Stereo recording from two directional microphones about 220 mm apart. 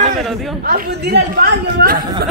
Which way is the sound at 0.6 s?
45° right (ahead or behind).